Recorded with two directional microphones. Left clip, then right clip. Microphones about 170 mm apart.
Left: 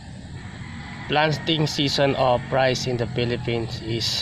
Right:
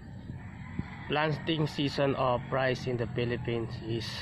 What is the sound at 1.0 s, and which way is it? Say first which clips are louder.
Speech: left 9 dB; 5° left (ahead or behind).